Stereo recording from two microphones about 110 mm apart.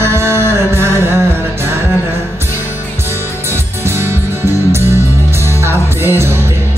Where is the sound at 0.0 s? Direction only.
25° right (ahead or behind).